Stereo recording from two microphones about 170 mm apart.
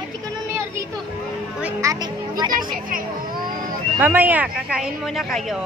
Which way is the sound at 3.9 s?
10° right (ahead or behind).